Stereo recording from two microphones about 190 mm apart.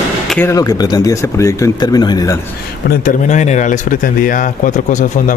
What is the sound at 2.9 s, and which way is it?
Speech, 45° left (ahead or behind).